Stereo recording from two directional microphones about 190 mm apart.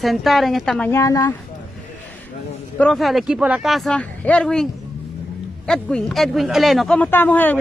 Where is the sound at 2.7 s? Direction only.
5° left (ahead or behind).